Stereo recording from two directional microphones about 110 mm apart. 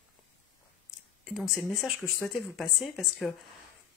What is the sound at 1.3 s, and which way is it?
Speech, 5° right (ahead or behind).